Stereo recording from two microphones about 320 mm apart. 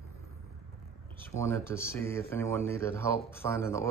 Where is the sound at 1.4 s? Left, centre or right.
Centre.